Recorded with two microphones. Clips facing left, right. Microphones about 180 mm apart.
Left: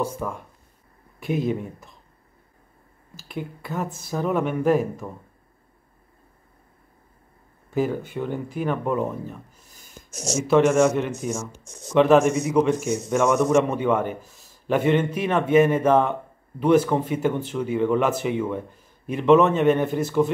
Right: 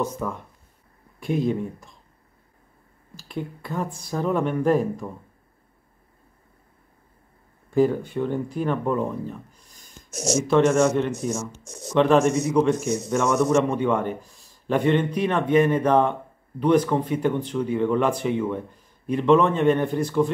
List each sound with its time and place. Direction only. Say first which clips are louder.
0.0 s speech: even; 10° left (ahead or behind)
3.2 s speech: right 1 dB; 5° left (ahead or behind)
7.7 s speech: right 4 dB; 5° left (ahead or behind)
10.1 s speech: right 3 dB; 75° right (ahead or behind)
10.4 s speech: left 2 dB; 5° left (ahead or behind)